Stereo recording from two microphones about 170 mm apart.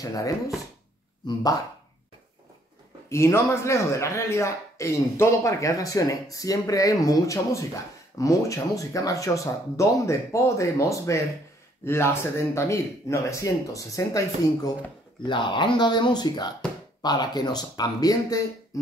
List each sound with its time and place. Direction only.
0.0 s speech: 20° left (ahead or behind)
3.1 s speech: 15° left (ahead or behind)